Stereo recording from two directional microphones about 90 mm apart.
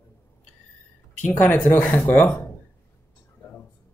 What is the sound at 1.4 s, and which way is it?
Speech, 25° left (ahead or behind).